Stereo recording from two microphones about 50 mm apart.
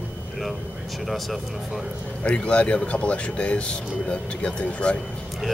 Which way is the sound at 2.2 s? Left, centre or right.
Left.